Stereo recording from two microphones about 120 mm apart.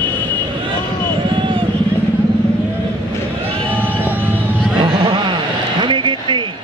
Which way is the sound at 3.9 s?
15° right (ahead or behind).